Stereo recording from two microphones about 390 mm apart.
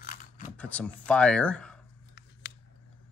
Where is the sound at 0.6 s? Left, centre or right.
Centre.